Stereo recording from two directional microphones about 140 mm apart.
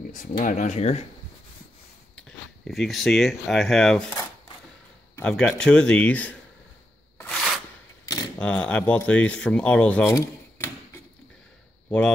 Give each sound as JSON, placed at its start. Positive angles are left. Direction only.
{"t": 0.1, "sound": "speech", "side_deg": 85}
{"t": 2.1, "sound": "speech", "side_deg": 5}
{"t": 5.2, "sound": "speech", "side_deg": 5}
{"t": 7.2, "sound": "a sound", "side_deg": 5}
{"t": 8.4, "sound": "speech", "side_deg": 10}
{"t": 10.0, "sound": "a sound", "side_deg": 20}